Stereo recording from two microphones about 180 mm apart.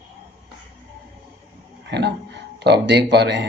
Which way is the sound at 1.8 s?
70° right (ahead or behind).